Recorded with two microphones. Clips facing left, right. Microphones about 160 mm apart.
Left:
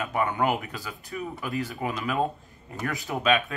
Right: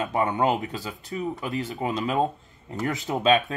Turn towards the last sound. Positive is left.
turn(degrees=-30)  # may be behind; listen again after turning